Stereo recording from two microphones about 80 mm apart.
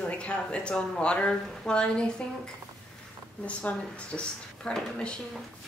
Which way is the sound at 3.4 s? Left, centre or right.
Centre.